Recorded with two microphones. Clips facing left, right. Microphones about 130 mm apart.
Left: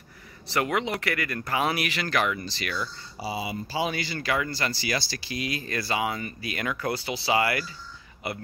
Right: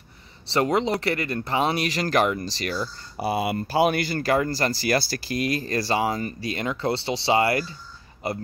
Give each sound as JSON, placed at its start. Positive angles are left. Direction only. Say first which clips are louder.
{"t": 0.5, "sound": "speech", "louder": "right 5 dB", "side_deg": -30}
{"t": 3.2, "sound": "speech", "louder": "right 7 dB", "side_deg": -60}